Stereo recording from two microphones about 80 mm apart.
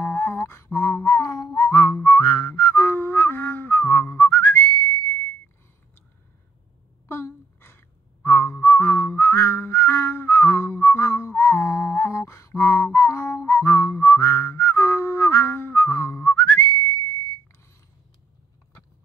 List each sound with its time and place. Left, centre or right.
0.0 s a sound: left
1.0 s whistling: left
2.0 s music: left
7.1 s whistling: left